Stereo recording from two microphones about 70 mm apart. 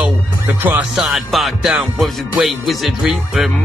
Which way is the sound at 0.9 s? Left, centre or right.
Centre.